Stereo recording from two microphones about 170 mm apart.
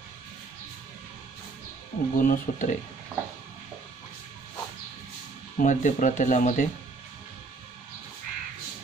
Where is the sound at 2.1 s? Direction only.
50° left (ahead or behind).